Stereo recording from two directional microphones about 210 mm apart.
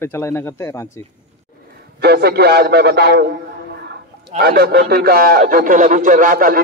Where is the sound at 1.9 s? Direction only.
50° right (ahead or behind).